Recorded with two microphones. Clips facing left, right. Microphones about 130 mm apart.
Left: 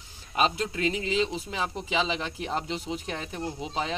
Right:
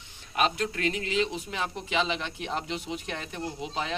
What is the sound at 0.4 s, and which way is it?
Speech, 30° left (ahead or behind).